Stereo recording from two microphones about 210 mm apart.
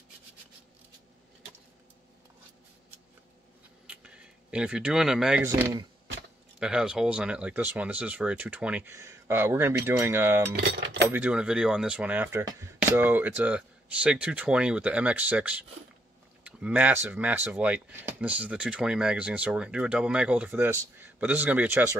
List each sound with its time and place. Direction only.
3.8 s speech: 5° right (ahead or behind)
10.5 s speech: 55° right (ahead or behind)
11.1 s speech: 10° right (ahead or behind)